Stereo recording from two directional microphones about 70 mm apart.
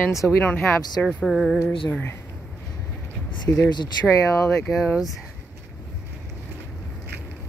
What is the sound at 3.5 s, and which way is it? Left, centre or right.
Speech, left.